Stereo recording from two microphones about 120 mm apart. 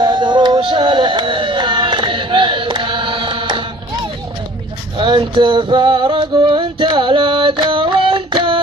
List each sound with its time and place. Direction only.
0.0 s music: 40° right (ahead or behind)
4.9 s music: 45° right (ahead or behind)